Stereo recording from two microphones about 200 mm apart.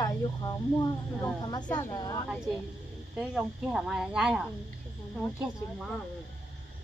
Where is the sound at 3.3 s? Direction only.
Centre (ahead or behind).